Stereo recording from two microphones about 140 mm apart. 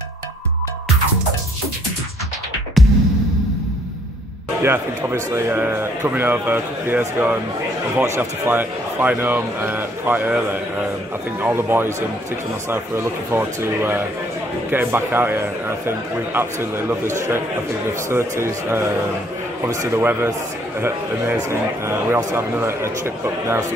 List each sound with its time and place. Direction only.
2.8 s music: centre (ahead or behind)
4.6 s a man's voice: 20° right (ahead or behind)